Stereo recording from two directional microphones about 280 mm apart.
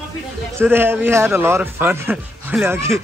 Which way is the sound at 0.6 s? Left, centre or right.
Centre.